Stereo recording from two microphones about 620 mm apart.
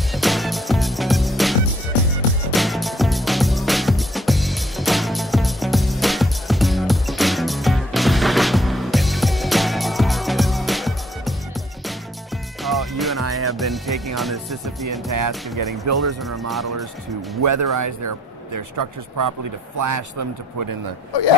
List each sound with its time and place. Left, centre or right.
0.1 s music: centre
12.6 s music: centre
14.9 s speech: right
17.4 s speech: right